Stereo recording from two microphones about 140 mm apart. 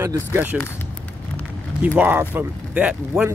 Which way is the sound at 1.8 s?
10° right (ahead or behind).